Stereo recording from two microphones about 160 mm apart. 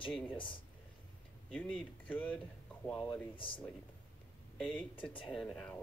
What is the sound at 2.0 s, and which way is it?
Speech, 10° left (ahead or behind).